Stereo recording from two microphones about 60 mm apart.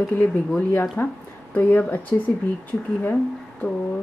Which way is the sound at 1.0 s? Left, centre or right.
Left.